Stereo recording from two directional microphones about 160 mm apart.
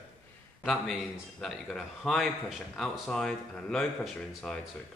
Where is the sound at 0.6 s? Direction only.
Centre (ahead or behind).